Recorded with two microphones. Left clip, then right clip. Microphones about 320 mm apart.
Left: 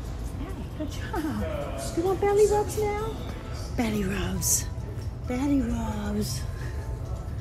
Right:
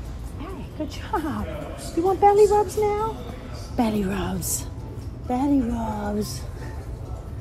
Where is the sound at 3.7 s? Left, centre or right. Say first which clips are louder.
Right 5 dB; centre.